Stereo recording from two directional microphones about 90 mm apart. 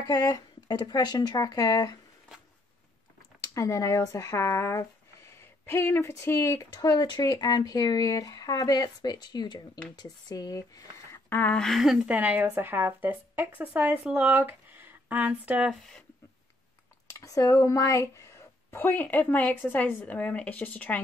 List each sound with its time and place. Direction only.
0.0 s speech: 45° left (ahead or behind)
3.3 s speech: 40° left (ahead or behind)
6.7 s speech: 50° left (ahead or behind)
11.2 s speech: 20° left (ahead or behind)
11.5 s speech: 5° left (ahead or behind)
12.1 s speech: 15° right (ahead or behind)
17.1 s speech: 35° left (ahead or behind); by 21.0 s 15° left (ahead or behind)